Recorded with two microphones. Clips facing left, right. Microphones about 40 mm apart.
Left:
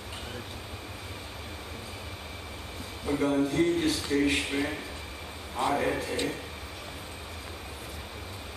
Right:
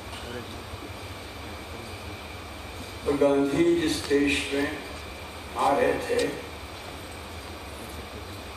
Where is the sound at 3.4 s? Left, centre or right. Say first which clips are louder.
Right 3 dB; right.